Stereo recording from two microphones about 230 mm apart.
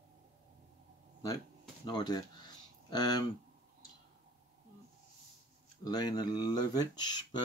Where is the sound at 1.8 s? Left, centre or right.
Centre.